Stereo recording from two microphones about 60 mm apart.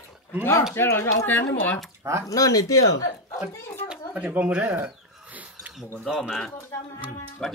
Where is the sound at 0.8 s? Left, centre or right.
Left.